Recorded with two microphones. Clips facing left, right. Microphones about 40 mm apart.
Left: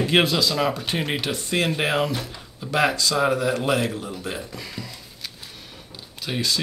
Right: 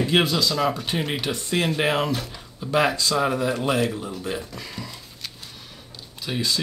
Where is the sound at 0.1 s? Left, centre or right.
Centre.